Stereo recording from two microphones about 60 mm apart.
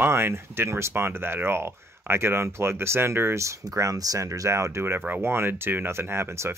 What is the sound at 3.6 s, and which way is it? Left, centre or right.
Speech, right.